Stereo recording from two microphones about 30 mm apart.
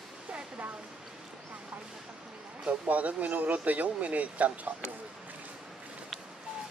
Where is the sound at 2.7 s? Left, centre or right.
Right.